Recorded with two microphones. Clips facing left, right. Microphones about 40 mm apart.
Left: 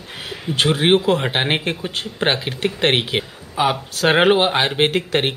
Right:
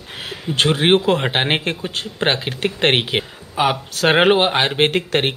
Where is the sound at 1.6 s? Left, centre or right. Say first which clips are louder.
Even; centre.